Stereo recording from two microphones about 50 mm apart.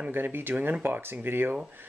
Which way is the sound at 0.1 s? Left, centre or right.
Right.